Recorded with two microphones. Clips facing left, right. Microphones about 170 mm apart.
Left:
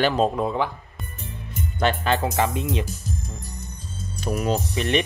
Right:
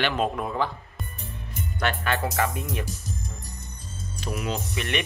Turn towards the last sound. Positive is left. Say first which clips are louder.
# left 6 dB
turn(degrees=35)  # may be behind; listen again after turning